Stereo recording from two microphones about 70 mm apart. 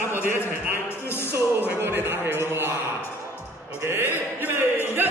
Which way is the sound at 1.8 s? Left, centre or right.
Right.